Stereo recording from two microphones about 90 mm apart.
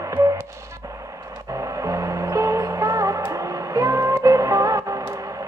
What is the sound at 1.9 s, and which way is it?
Music, 35° right (ahead or behind).